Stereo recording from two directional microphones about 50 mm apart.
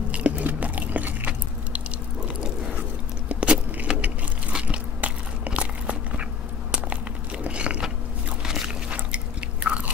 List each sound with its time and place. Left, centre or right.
0.1 s chewing: right
3.3 s a sound: right
5.0 s biting: right
7.4 s biting: right